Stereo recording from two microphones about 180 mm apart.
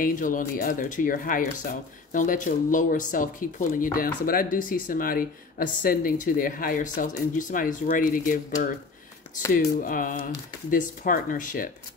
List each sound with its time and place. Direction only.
0.0 s speech: 50° left (ahead or behind)
9.8 s speech: 50° left (ahead or behind)